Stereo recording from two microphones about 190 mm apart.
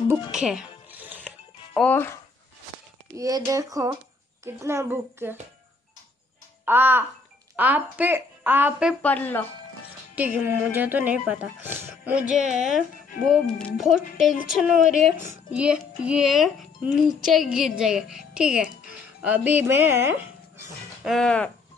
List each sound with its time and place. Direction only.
0.3 s music: 5° right (ahead or behind)
3.2 s speech: 20° right (ahead or behind)
6.6 s a child's voice: 10° right (ahead or behind)
9.0 s speech: 10° left (ahead or behind)
10.1 s speech: 10° right (ahead or behind)